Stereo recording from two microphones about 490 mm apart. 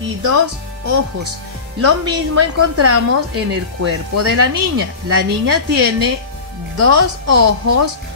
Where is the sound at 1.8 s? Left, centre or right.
Right.